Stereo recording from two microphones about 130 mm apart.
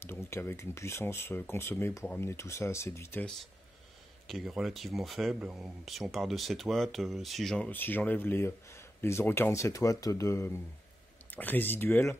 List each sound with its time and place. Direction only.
0.0 s speech: 20° left (ahead or behind)
4.3 s speech: centre (ahead or behind); by 12.2 s 20° left (ahead or behind)